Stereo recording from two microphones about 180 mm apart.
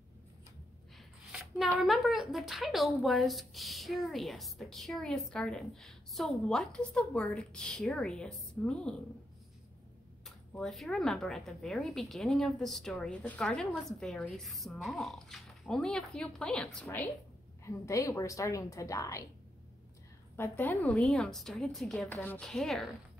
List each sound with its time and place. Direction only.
0.9 s a sound: centre (ahead or behind)
1.9 s speech: centre (ahead or behind)
10.2 s speech: centre (ahead or behind)
17.6 s a woman's voice: 15° left (ahead or behind)
20.3 s speech: 10° left (ahead or behind)